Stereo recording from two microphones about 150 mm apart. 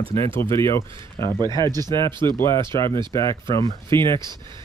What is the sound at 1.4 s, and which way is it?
Speech, 30° right (ahead or behind).